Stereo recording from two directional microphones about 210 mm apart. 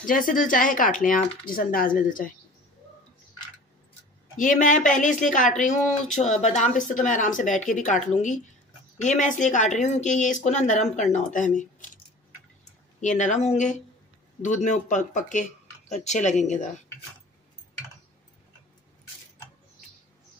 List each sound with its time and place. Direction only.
0.0 s speech: 40° left (ahead or behind)
4.4 s speech: 40° left (ahead or behind)
13.0 s speech: 35° left (ahead or behind)